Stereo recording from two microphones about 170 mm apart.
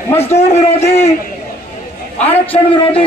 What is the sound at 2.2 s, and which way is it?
Speech, 10° left (ahead or behind).